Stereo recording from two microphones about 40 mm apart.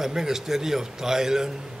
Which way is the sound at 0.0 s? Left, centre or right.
Centre.